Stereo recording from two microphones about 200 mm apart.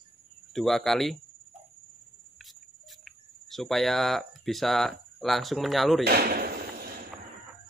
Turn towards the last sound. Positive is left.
turn(degrees=-50)  # may be behind; listen again after turning